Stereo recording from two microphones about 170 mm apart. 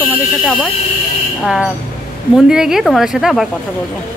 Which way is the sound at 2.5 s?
5° right (ahead or behind).